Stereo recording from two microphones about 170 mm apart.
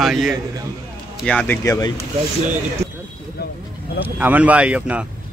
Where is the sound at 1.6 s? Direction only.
20° left (ahead or behind).